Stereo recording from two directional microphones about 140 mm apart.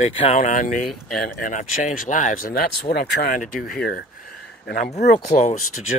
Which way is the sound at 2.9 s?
90° left.